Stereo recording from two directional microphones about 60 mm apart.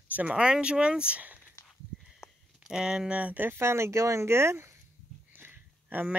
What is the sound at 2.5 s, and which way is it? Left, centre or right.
Speech, centre.